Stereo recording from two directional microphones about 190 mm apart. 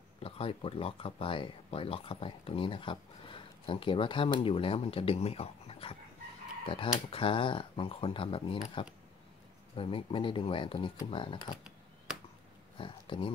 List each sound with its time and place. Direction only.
0.2 s speech: 30° left (ahead or behind)
12.7 s speech: 25° left (ahead or behind)